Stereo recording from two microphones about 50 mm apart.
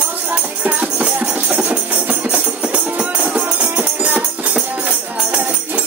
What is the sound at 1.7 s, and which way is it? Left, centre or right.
Music, right.